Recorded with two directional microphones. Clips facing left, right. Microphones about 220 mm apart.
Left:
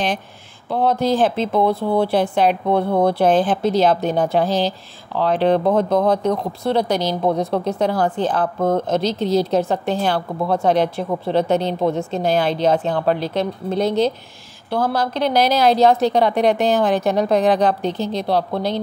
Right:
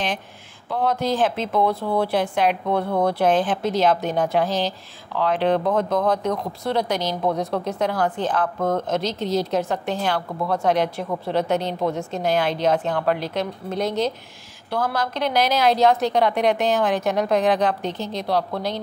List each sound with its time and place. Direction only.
0.7 s speech: 30° left (ahead or behind)